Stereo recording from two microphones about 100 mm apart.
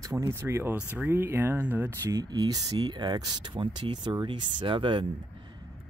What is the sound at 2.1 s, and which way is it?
Speech, 40° right (ahead or behind).